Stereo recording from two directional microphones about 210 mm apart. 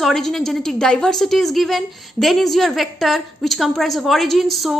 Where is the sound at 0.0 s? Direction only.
Centre (ahead or behind).